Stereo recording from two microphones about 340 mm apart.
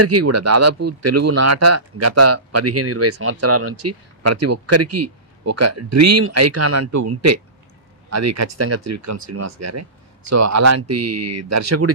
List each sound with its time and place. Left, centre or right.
0.0 s speech: right